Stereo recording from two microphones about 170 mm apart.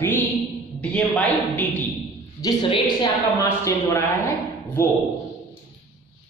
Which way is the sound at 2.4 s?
25° left (ahead or behind).